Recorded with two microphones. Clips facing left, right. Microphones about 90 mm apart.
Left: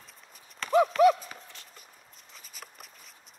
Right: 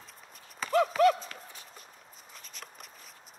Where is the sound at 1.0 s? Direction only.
10° left (ahead or behind).